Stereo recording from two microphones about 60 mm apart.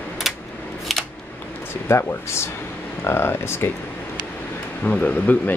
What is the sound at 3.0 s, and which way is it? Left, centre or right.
Speech, left.